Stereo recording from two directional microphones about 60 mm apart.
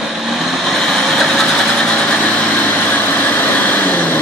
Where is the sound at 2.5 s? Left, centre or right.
Left.